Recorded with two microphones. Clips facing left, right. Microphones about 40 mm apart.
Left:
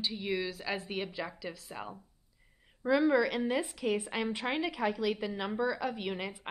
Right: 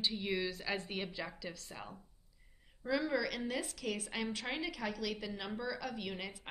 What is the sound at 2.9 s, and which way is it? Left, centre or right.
A woman's voice, left.